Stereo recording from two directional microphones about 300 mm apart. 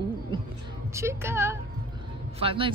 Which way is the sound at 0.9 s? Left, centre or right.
Centre.